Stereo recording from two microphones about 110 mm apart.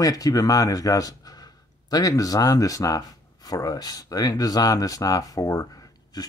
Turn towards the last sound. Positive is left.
turn(degrees=35)  # may be behind; listen again after turning